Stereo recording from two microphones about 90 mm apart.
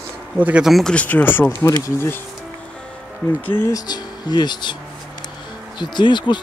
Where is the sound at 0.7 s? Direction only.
Centre (ahead or behind).